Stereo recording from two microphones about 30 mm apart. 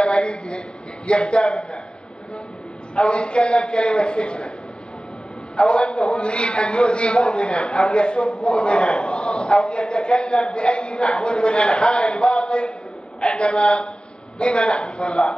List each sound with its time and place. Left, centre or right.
0.0 s a man's voice: left
3.0 s a man's voice: left
5.6 s a man's voice: left